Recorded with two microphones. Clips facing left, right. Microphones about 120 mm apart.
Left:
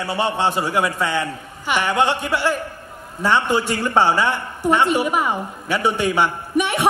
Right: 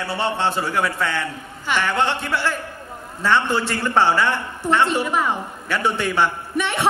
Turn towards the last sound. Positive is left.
turn(degrees=15)  # may be behind; listen again after turning